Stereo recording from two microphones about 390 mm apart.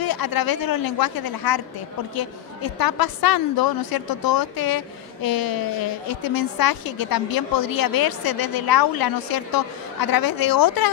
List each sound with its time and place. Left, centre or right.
0.0 s a woman's voice: left